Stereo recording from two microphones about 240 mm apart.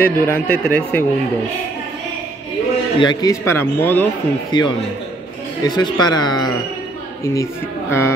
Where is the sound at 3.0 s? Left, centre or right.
Centre.